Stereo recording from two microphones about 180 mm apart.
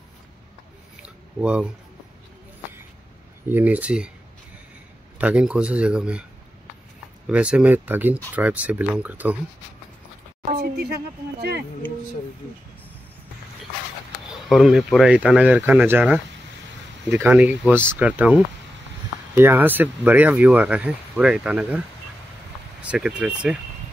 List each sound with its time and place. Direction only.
1.0 s a sound: 5° right (ahead or behind)
3.4 s speech: 10° right (ahead or behind)
5.2 s speech: 5° right (ahead or behind)
7.2 s speech: 5° right (ahead or behind)
10.6 s speech: 60° right (ahead or behind)
14.5 s speech: centre (ahead or behind)